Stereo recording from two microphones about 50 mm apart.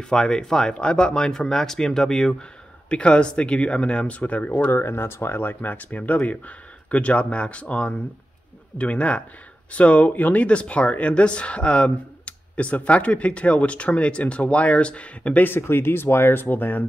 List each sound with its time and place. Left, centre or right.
0.0 s speech: centre
4.6 s speech: left
15.4 s speech: left